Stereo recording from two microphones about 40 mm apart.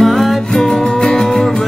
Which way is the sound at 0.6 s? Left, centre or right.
Centre.